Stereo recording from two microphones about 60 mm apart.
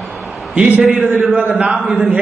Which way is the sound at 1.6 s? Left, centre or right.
Centre.